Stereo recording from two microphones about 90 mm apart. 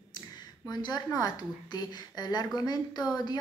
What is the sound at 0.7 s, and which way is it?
Speech, 45° left (ahead or behind).